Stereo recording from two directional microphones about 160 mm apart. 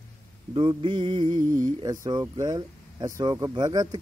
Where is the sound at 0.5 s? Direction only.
35° right (ahead or behind).